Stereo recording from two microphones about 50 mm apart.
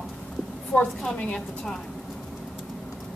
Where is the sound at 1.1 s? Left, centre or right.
Left.